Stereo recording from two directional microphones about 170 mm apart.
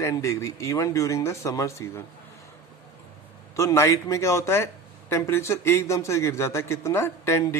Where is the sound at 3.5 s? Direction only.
15° left (ahead or behind).